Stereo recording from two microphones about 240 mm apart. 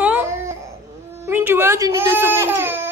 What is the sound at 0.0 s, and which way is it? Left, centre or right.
Babbling, centre.